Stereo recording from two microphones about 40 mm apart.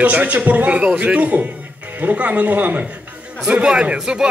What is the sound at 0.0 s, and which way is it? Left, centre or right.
A man's voice, right.